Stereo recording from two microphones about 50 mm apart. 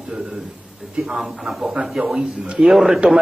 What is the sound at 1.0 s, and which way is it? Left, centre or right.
Speech, centre.